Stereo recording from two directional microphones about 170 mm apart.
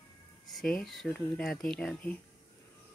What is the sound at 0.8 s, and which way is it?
Speech, centre (ahead or behind).